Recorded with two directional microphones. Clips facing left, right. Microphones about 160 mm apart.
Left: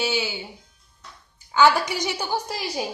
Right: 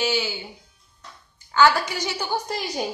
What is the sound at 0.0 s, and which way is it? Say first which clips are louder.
Speech: right 1 dB; 10° left (ahead or behind).